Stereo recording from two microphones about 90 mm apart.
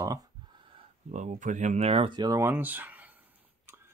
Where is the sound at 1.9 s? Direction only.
80° right.